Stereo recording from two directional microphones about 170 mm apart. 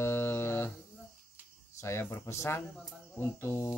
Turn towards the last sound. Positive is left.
turn(degrees=15)  # may be behind; listen again after turning